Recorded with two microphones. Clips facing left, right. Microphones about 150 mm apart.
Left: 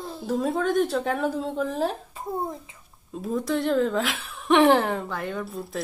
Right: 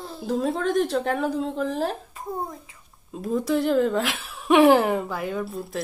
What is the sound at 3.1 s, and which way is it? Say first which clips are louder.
Speech: right 2 dB; centre (ahead or behind).